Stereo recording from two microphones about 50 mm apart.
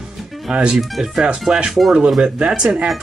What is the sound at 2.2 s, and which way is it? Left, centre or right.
Speech, right.